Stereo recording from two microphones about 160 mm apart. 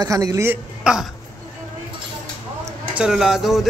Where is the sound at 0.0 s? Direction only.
20° right (ahead or behind).